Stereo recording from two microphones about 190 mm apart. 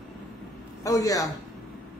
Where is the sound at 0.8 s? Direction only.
20° left (ahead or behind).